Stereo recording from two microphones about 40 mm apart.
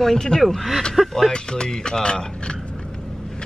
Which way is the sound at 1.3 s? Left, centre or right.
Left.